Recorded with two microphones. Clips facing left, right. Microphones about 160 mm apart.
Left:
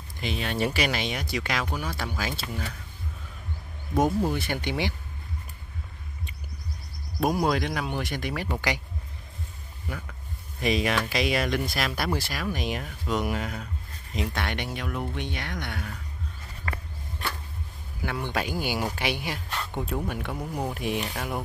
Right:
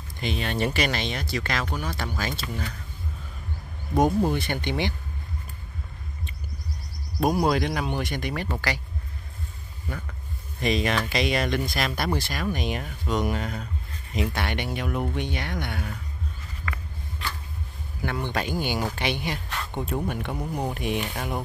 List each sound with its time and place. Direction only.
0.2 s speech: 5° left (ahead or behind)
4.3 s speech: 5° left (ahead or behind)
7.2 s speech: centre (ahead or behind)
8.5 s speech: 15° left (ahead or behind)
10.6 s speech: 5° left (ahead or behind)
18.0 s speech: 5° left (ahead or behind)